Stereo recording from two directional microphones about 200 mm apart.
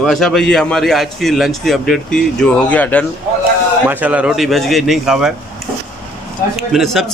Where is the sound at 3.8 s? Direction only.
10° right (ahead or behind).